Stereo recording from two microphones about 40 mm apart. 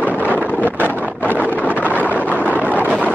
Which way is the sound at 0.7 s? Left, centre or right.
Right.